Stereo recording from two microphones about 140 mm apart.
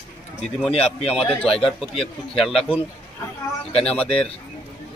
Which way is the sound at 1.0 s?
45° left (ahead or behind).